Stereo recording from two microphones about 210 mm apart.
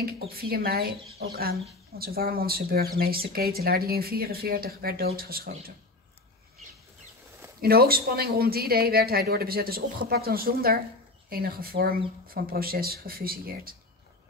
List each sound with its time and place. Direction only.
0.3 s speech: 45° right (ahead or behind)
7.6 s speech: 45° right (ahead or behind)